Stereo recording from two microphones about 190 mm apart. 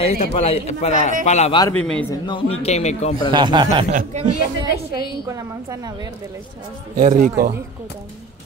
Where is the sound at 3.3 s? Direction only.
25° right (ahead or behind).